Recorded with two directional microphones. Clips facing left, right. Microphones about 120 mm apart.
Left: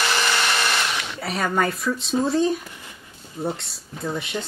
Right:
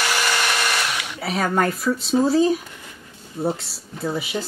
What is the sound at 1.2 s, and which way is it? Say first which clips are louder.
Speech: right 2 dB; centre (ahead or behind).